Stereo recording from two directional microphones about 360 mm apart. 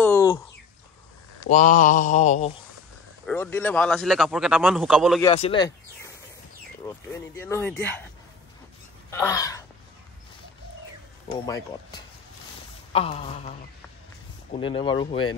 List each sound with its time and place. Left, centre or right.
0.0 s a sound: centre
1.5 s mantra: left
3.3 s a man's voice: centre
5.2 s speech: centre
6.9 s a man's voice: centre
9.1 s a sound: centre
11.2 s speech: centre
14.5 s speech: centre